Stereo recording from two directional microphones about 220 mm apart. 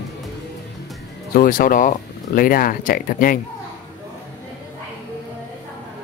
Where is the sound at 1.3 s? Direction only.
40° left (ahead or behind).